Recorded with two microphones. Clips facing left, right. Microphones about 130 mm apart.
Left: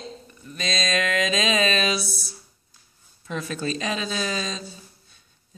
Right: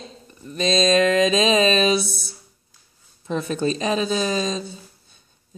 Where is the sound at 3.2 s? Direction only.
30° right (ahead or behind).